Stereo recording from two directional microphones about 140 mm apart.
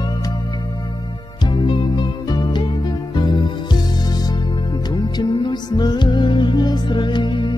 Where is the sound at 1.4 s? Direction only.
35° left (ahead or behind).